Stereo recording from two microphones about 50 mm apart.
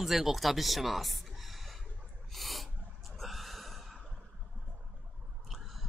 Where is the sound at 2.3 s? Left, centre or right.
Centre.